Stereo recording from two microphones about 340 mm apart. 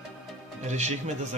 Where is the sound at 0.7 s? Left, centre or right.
Centre.